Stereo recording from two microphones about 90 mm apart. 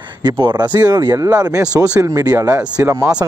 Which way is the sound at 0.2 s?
55° right (ahead or behind).